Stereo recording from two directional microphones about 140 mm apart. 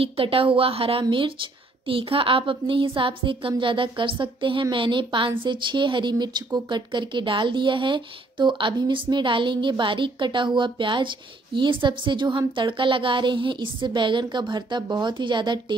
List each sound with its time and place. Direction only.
0.0 s speech: 40° right (ahead or behind)